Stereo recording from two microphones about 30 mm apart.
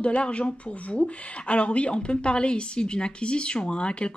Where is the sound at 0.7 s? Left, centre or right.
Left.